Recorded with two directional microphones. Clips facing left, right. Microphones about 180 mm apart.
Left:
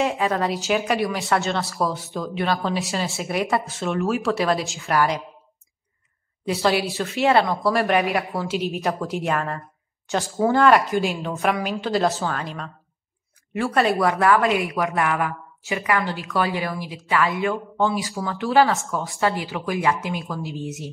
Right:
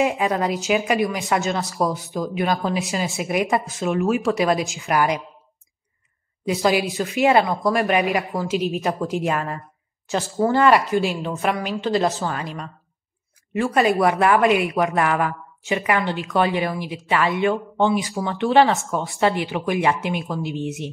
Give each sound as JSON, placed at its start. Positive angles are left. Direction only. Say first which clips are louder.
{"t": 0.0, "sound": "speech", "louder": "right 1 dB", "side_deg": -15}
{"t": 0.7, "sound": "a woman's voice", "louder": "right 3 dB", "side_deg": 0}
{"t": 1.6, "sound": "speech", "louder": "right 2 dB", "side_deg": -15}
{"t": 2.7, "sound": "a woman's voice", "louder": "right 1 dB", "side_deg": 0}
{"t": 3.2, "sound": "speech", "louder": "right 3 dB", "side_deg": -10}
{"t": 3.6, "sound": "a woman's voice", "louder": "right 3 dB", "side_deg": 0}
{"t": 7.0, "sound": "speech", "louder": "right 2 dB", "side_deg": -15}
{"t": 7.5, "sound": "a woman's voice", "louder": "even", "side_deg": 0}
{"t": 8.4, "sound": "a woman's voice", "louder": "right 2 dB", "side_deg": 0}
{"t": 13.9, "sound": "speech", "louder": "right 1 dB", "side_deg": -20}
{"t": 15.0, "sound": "speech", "louder": "right 2 dB", "side_deg": -30}